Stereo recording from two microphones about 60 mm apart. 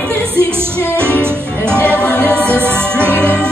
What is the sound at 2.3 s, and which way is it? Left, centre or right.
Music, right.